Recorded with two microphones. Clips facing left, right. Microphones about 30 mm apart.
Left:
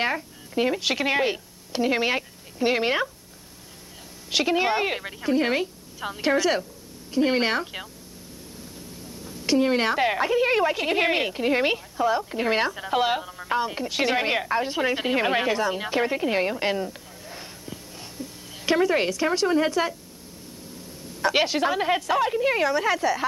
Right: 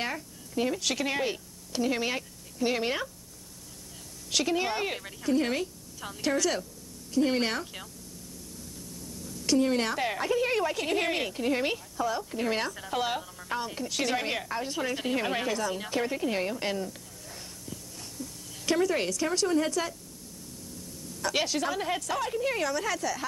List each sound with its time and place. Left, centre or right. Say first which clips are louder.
0.0 s a woman's voice: left 8 dB; left
4.3 s a woman's voice: left 6 dB; left